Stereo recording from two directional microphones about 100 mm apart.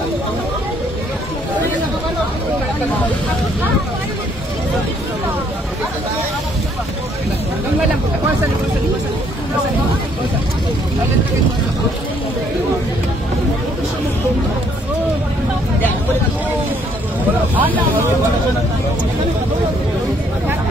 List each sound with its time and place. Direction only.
17.6 s speech: 15° right (ahead or behind)